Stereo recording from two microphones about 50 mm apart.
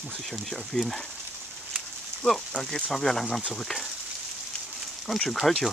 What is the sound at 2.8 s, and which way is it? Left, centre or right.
Speech, centre.